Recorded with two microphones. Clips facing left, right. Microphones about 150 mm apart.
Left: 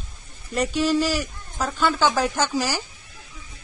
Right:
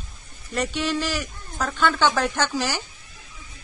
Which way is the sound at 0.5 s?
40° left (ahead or behind).